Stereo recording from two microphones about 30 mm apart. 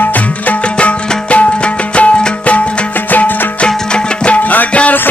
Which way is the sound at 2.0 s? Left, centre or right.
Left.